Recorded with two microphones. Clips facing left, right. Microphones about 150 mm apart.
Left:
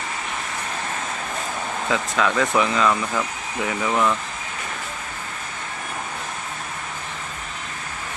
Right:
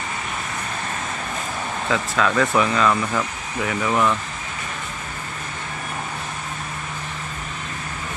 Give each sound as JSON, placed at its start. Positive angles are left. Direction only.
{"t": 1.9, "sound": "speech", "side_deg": 15}
{"t": 3.9, "sound": "speech", "side_deg": 0}